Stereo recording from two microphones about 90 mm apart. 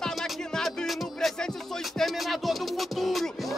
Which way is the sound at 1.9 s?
Centre (ahead or behind).